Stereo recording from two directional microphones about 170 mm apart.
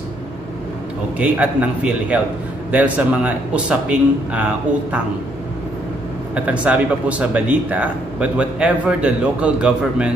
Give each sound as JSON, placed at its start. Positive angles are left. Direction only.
{"t": 1.1, "sound": "speech", "side_deg": -10}
{"t": 6.3, "sound": "speech", "side_deg": -5}